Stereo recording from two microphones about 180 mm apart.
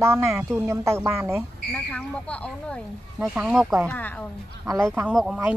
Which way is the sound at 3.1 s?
5° right (ahead or behind).